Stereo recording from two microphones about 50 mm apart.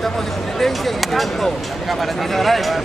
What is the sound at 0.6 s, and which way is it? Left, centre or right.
Speech, centre.